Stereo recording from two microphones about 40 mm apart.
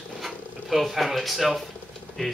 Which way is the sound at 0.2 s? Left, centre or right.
Centre.